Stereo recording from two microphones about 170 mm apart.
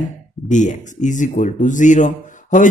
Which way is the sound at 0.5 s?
45° left (ahead or behind).